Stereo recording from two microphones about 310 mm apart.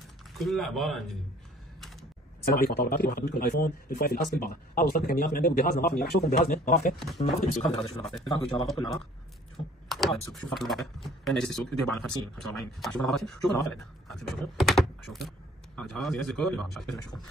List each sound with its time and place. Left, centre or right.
0.4 s speech: centre
2.4 s speech: left; by 9.0 s centre
9.8 s speech: centre
14.6 s speech: centre